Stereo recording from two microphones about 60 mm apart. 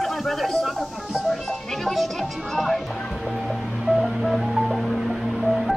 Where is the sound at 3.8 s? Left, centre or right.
Centre.